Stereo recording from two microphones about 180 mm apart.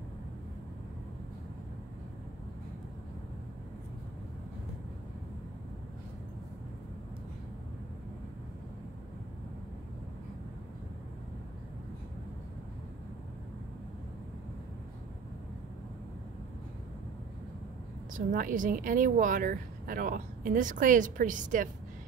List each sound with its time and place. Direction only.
18.1 s speech: 50° right (ahead or behind)